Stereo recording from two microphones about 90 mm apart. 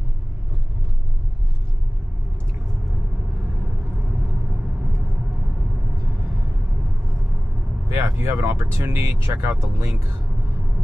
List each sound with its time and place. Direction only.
7.9 s speech: 25° right (ahead or behind)